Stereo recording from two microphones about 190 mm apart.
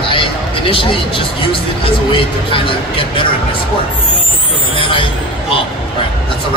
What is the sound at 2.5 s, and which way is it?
Speech, 30° left (ahead or behind).